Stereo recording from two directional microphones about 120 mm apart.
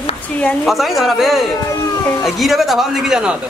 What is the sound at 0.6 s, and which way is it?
A man's voice, centre (ahead or behind).